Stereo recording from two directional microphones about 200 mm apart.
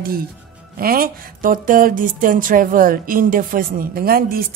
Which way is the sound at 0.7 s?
45° right (ahead or behind).